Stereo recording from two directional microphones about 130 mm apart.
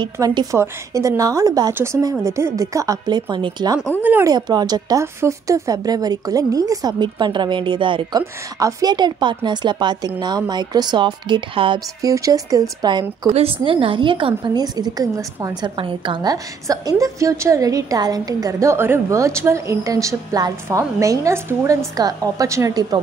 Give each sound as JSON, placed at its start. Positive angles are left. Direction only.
{"t": 0.0, "sound": "a woman's voice", "side_deg": -35}
{"t": 4.0, "sound": "speech", "side_deg": -15}
{"t": 4.3, "sound": "a woman's voice", "side_deg": -30}
{"t": 8.2, "sound": "a woman's voice", "side_deg": -25}
{"t": 12.0, "sound": "a woman's voice", "side_deg": -25}
{"t": 13.3, "sound": "a woman's voice", "side_deg": -50}